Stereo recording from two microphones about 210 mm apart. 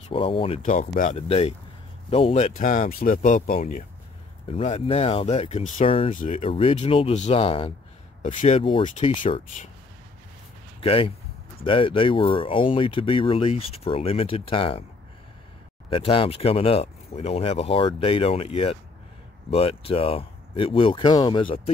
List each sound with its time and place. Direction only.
0.1 s speech: 25° left (ahead or behind); by 3.8 s 40° left (ahead or behind)
4.5 s speech: 30° left (ahead or behind)
10.8 s speech: 25° left (ahead or behind)
15.9 s speech: 25° left (ahead or behind)